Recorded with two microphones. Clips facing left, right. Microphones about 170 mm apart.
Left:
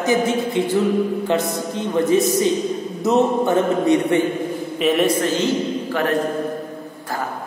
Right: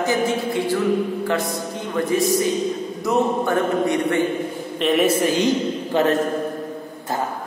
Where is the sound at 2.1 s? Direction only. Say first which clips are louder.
Left 1 dB; 20° left (ahead or behind).